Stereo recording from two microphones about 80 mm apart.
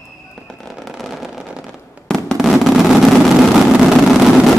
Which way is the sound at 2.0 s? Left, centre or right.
Centre.